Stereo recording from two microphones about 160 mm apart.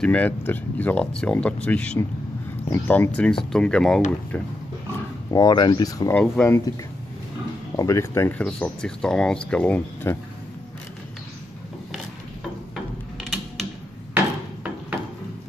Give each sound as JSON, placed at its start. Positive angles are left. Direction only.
{"t": 0.0, "sound": "speech", "side_deg": 10}
{"t": 5.3, "sound": "speech", "side_deg": 25}
{"t": 6.1, "sound": "speech", "side_deg": 10}
{"t": 7.7, "sound": "speech", "side_deg": 20}
{"t": 13.2, "sound": "mechanisms", "side_deg": 0}
{"t": 14.1, "sound": "a sound", "side_deg": -10}